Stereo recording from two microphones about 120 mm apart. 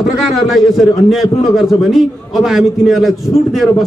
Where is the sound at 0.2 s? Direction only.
Centre (ahead or behind).